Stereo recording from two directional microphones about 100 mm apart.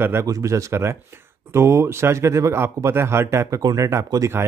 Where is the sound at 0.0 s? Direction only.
25° right (ahead or behind).